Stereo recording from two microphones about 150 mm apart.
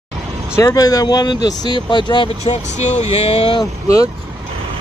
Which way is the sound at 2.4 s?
50° left (ahead or behind).